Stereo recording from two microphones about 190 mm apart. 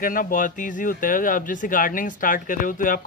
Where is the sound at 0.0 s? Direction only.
45° left (ahead or behind).